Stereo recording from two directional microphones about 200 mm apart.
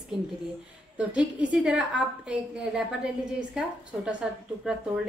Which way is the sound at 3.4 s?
5° right (ahead or behind).